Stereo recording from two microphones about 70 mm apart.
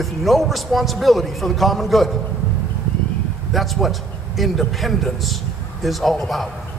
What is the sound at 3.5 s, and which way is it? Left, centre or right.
A man's voice, centre.